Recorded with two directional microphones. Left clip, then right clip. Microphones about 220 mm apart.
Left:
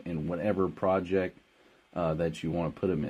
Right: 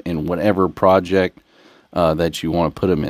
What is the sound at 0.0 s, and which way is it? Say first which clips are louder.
Speech: right 13 dB; 45° right (ahead or behind).